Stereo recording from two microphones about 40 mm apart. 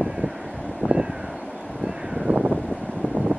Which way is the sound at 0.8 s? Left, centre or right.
Left.